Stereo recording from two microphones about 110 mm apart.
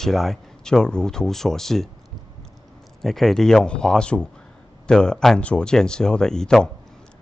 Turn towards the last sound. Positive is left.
turn(degrees=5)  # may be behind; listen again after turning